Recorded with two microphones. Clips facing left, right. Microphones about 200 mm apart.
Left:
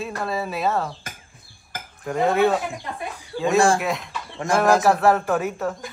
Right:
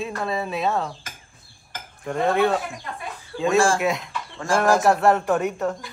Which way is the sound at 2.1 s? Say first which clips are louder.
Left 1 dB; 5° left (ahead or behind).